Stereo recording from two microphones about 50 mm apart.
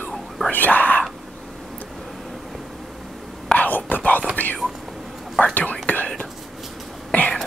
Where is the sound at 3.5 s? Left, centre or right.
Left.